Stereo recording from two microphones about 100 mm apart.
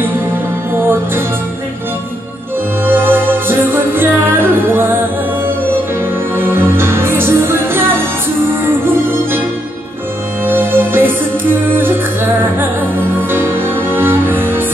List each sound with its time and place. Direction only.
0.7 s music: 20° right (ahead or behind)
2.8 s music: 20° right (ahead or behind)
6.3 s music: 20° right (ahead or behind)
10.4 s music: 20° right (ahead or behind)